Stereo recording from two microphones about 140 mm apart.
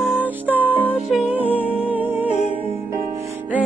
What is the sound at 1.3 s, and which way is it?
Music, 10° right (ahead or behind).